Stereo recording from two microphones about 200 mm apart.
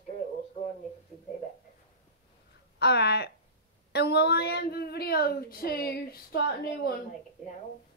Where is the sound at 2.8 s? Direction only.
55° left (ahead or behind).